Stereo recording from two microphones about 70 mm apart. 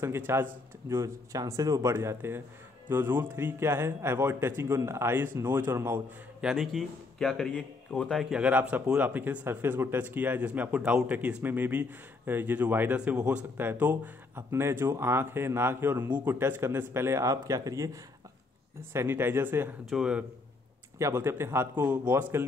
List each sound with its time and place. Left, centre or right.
0.0 s a man's voice: right
0.8 s a man's voice: right
2.0 s a man's voice: right
6.5 s speech: centre
8.1 s speech: centre
8.4 s a man's voice: right
13.6 s speech: right
14.5 s a man's voice: right
17.3 s a man's voice: right
18.8 s a man's voice: right
19.9 s a man's voice: centre
21.0 s a man's voice: right